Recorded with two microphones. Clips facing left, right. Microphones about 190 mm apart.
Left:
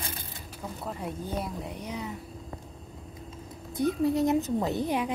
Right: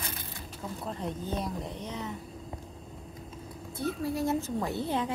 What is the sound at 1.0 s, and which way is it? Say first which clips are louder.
Speech: even; 10° left (ahead or behind).